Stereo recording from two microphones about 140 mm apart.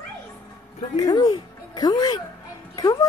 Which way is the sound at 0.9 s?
30° left (ahead or behind).